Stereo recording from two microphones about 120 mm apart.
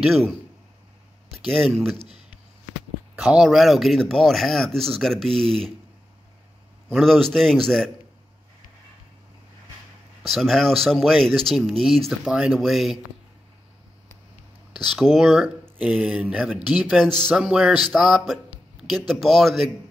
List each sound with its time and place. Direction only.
1.5 s speech: 5° left (ahead or behind)
2.0 s speech: 60° right (ahead or behind)
3.2 s speech: 5° right (ahead or behind)
6.9 s speech: 5° left (ahead or behind)
10.2 s speech: centre (ahead or behind)
15.0 s speech: centre (ahead or behind)